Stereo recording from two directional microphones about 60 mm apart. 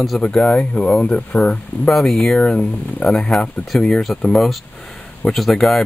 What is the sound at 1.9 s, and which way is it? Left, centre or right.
Speech, centre.